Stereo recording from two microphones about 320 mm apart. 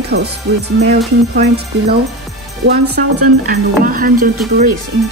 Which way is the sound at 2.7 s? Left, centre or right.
Right.